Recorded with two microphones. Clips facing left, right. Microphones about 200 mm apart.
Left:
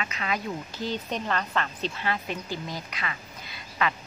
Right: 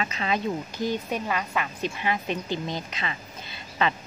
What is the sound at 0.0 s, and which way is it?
Speech, 30° right (ahead or behind).